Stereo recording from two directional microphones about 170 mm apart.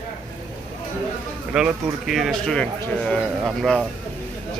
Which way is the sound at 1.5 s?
Centre (ahead or behind).